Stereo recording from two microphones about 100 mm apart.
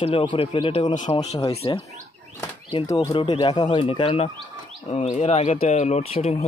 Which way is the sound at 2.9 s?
30° left (ahead or behind).